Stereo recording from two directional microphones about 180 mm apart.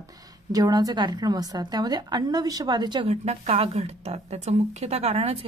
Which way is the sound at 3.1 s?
35° right (ahead or behind).